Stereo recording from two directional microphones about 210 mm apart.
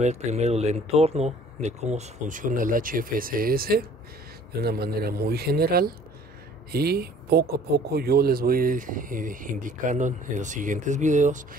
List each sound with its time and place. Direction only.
0.0 s a man's voice: 30° right (ahead or behind)